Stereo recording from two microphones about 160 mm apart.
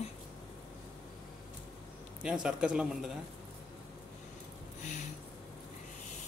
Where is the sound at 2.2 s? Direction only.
5° right (ahead or behind).